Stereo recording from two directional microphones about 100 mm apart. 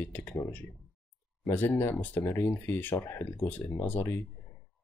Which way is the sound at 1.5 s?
15° left (ahead or behind).